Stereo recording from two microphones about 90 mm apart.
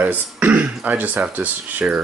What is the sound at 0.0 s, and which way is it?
Speech, 15° right (ahead or behind).